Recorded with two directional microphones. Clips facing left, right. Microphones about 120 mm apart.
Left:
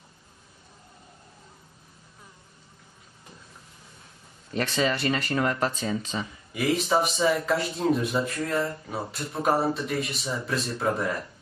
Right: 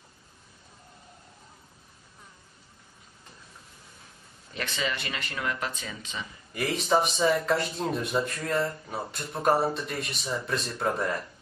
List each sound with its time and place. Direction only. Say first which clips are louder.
4.6 s speech: left 7 dB; 40° left (ahead or behind)
6.5 s speech: left 1 dB; centre (ahead or behind)